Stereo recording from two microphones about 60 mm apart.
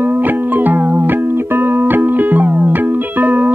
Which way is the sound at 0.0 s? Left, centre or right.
Right.